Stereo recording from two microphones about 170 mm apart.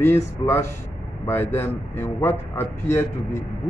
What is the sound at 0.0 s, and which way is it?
Speech, 15° left (ahead or behind).